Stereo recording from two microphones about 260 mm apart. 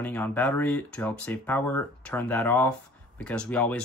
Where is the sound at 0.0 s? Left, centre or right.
Centre.